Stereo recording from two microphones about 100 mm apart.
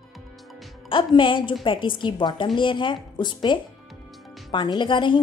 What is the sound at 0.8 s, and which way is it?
A woman's voice, 55° left (ahead or behind).